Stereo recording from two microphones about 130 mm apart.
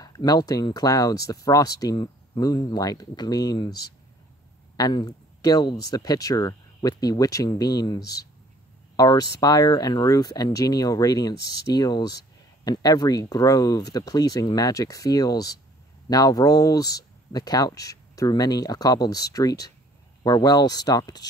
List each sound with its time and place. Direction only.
0.0 s speech: 30° left (ahead or behind)